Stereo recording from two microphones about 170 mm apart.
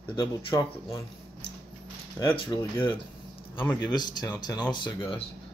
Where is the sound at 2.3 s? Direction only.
30° left (ahead or behind).